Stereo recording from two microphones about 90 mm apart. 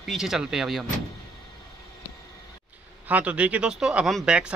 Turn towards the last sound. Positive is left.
turn(degrees=-10)  # may be behind; listen again after turning